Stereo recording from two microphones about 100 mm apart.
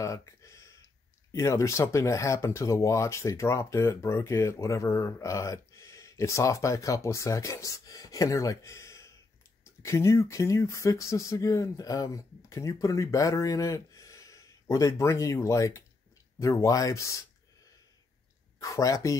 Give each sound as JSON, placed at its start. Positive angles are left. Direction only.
{"t": 0.0, "sound": "a sound", "side_deg": 30}
{"t": 1.3, "sound": "speech", "side_deg": 30}
{"t": 18.6, "sound": "speech", "side_deg": 35}